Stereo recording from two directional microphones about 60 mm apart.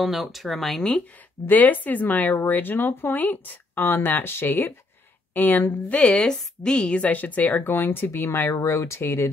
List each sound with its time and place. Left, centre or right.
0.0 s speech: centre
1.5 s speech: left
5.9 s speech: centre; by 8.5 s left
8.5 s speech: left
9.0 s speech: left